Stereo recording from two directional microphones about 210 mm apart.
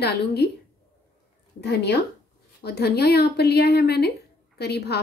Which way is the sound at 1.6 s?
50° left (ahead or behind).